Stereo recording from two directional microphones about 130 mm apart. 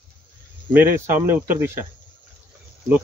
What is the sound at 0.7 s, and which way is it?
Speech, 15° right (ahead or behind).